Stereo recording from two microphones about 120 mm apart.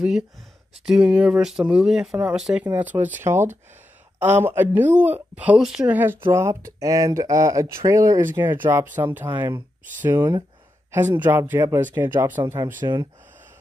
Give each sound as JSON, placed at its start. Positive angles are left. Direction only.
{"t": 0.8, "sound": "a woman's voice", "side_deg": -10}
{"t": 10.9, "sound": "a woman's voice", "side_deg": -20}
{"t": 12.8, "sound": "speech", "side_deg": -35}